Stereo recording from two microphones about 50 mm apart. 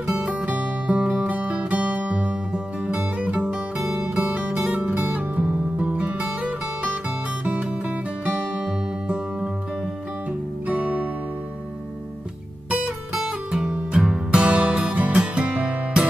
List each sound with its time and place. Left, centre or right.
0.0 s music: centre
0.3 s music: right
8.3 s music: centre
10.7 s music: right
12.7 s music: centre
14.5 s music: right